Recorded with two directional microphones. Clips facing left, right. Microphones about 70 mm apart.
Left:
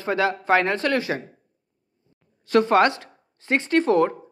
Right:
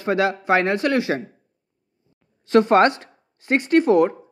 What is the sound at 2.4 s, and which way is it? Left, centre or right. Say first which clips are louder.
Speech: right 3 dB; right.